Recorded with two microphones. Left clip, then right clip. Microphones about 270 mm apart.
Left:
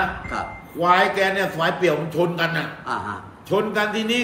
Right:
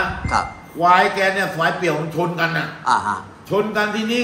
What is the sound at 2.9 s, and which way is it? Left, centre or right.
Speech, centre.